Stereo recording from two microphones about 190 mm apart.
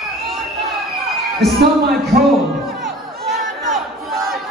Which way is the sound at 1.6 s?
55° right (ahead or behind).